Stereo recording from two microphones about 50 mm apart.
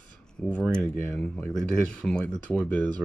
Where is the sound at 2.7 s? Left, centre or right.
Left.